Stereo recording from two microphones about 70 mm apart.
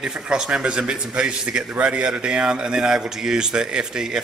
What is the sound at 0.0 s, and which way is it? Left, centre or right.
A man's voice, centre.